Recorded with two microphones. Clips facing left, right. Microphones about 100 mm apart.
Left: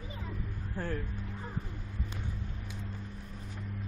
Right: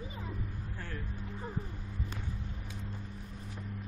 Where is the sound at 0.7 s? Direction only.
40° left (ahead or behind).